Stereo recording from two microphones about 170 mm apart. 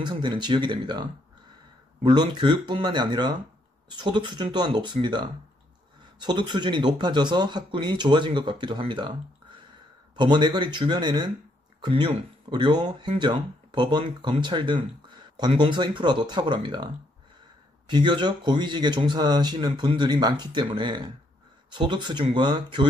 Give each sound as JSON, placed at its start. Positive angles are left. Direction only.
{"t": 0.0, "sound": "speech", "side_deg": -25}
{"t": 2.0, "sound": "speech", "side_deg": -25}
{"t": 10.1, "sound": "speech", "side_deg": -25}